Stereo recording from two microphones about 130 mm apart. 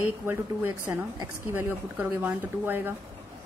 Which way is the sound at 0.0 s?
15° right (ahead or behind).